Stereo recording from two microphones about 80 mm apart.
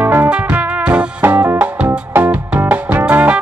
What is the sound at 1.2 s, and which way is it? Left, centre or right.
Music, right.